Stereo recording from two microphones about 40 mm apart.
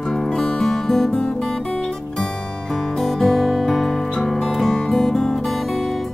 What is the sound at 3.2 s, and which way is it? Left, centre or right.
Music, centre.